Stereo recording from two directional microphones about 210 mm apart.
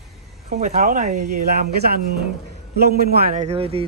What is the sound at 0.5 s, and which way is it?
Speech, 30° right (ahead or behind).